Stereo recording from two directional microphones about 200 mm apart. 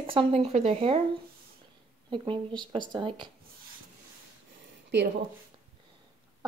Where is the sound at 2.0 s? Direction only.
25° right (ahead or behind).